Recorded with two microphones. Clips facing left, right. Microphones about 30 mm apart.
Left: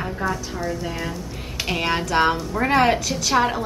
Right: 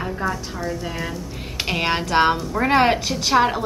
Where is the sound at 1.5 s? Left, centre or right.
Centre.